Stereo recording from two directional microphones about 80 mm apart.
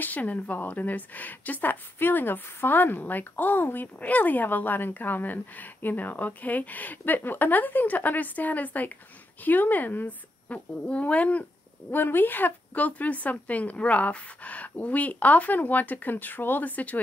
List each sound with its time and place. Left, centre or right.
0.0 s a woman's voice: centre